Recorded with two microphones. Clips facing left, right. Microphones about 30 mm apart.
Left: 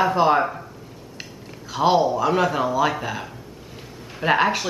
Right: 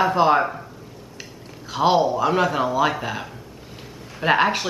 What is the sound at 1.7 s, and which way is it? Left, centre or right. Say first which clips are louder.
A woman's voice: even; centre.